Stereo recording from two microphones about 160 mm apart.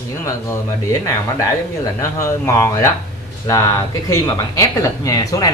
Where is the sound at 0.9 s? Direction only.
20° left (ahead or behind).